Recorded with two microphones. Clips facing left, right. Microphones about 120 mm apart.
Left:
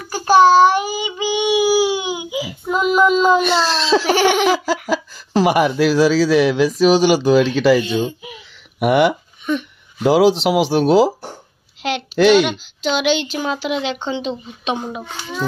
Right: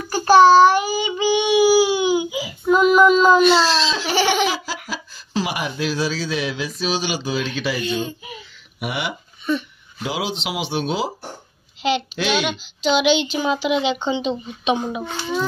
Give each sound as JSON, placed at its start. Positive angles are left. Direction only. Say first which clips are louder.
{"t": 0.1, "sound": "child singing", "louder": "even", "side_deg": 10}
{"t": 3.4, "sound": "speech", "louder": "right 2 dB", "side_deg": 55}
{"t": 4.0, "sound": "giggle", "louder": "left 4 dB", "side_deg": 15}
{"t": 4.4, "sound": "laughter", "louder": "left 6 dB", "side_deg": 55}
{"t": 5.8, "sound": "speech", "louder": "left 9 dB", "side_deg": 85}
{"t": 7.8, "sound": "speech", "louder": "left 4 dB", "side_deg": 25}
{"t": 8.7, "sound": "speech", "louder": "left 13 dB", "side_deg": 55}
{"t": 10.3, "sound": "speech", "louder": "left 9 dB", "side_deg": 85}
{"t": 12.4, "sound": "a child's voice", "louder": "even", "side_deg": 0}